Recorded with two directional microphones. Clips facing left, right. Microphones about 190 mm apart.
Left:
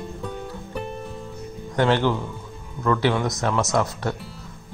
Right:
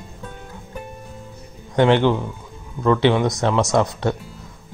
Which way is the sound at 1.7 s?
20° right (ahead or behind).